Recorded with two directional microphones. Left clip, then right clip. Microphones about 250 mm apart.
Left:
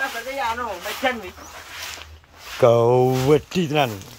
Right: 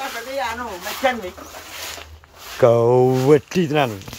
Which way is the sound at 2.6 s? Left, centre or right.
Centre.